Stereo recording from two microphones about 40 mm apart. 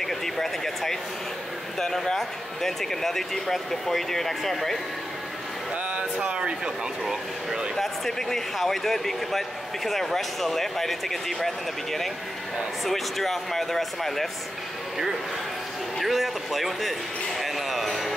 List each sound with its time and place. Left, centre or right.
0.0 s speech: centre
5.9 s speech: right
6.3 s speech: right
7.7 s speech: centre
16.0 s speech: centre
17.4 s a sound: centre